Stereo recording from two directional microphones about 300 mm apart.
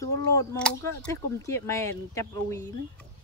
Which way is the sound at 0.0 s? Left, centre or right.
Centre.